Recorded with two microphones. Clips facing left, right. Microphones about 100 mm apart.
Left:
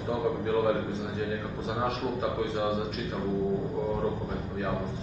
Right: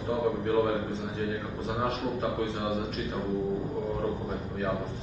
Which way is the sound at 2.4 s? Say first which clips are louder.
Left 2 dB; centre (ahead or behind).